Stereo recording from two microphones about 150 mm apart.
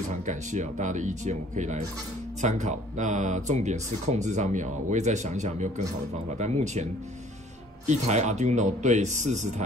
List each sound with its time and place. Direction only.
0.1 s speech: 55° right (ahead or behind)